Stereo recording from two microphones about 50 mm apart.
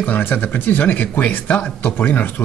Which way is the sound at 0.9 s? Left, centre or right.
Left.